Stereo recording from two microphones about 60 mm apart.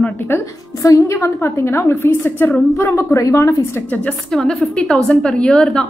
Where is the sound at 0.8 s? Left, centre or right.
Left.